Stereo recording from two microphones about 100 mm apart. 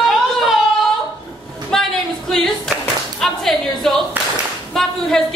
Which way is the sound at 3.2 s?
Centre (ahead or behind).